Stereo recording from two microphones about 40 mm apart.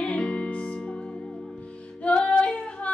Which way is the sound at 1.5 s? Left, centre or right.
Left.